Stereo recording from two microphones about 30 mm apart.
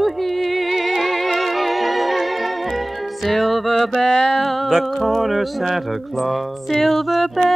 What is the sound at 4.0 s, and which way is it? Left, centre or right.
Music, left.